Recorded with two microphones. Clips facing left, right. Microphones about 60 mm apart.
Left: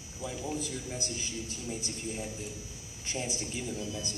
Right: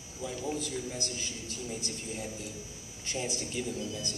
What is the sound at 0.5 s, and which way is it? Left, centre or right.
A man's voice, left.